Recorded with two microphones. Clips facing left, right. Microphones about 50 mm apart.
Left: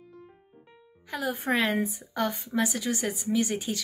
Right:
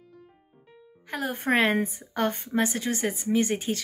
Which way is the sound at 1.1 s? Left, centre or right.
Right.